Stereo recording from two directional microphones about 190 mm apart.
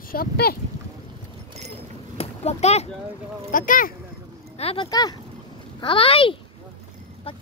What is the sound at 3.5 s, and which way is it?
Speech, 45° left (ahead or behind).